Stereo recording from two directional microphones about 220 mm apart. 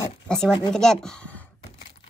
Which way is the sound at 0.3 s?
Centre (ahead or behind).